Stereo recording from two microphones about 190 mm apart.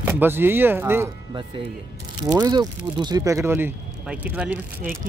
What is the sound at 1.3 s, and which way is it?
Speech, 25° right (ahead or behind).